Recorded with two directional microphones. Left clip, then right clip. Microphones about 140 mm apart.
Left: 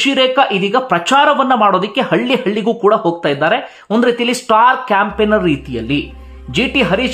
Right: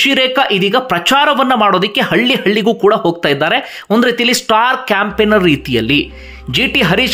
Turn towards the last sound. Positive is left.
turn(degrees=-20)  # may be behind; listen again after turning